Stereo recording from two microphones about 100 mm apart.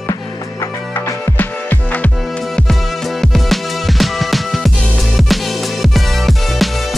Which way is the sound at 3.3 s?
Centre (ahead or behind).